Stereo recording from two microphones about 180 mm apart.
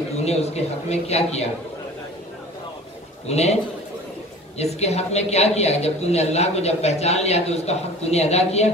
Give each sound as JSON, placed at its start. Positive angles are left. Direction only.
{"t": 0.2, "sound": "a woman's voice", "side_deg": 35}
{"t": 3.3, "sound": "a woman's voice", "side_deg": 35}
{"t": 4.6, "sound": "a woman's voice", "side_deg": 35}